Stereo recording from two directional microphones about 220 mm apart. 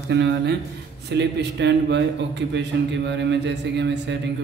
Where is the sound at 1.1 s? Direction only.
55° right (ahead or behind).